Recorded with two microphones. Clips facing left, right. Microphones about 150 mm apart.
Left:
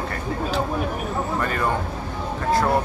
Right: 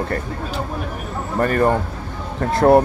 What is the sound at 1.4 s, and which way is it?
Speech, 50° right (ahead or behind).